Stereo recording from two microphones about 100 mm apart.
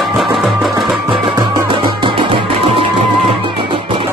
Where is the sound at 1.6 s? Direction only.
60° right (ahead or behind).